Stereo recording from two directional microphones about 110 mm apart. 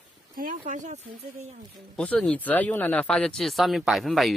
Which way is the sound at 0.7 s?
90° right.